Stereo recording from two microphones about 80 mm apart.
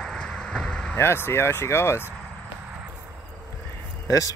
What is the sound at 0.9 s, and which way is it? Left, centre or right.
Speech, left.